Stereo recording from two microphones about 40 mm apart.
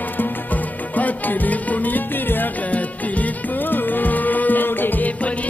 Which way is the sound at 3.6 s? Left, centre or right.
Left.